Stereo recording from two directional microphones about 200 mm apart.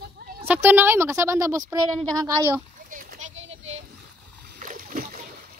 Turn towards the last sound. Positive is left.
turn(degrees=-45)  # may be behind; listen again after turning